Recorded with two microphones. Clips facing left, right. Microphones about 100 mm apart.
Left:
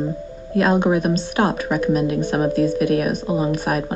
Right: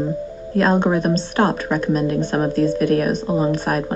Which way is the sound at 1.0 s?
10° left (ahead or behind).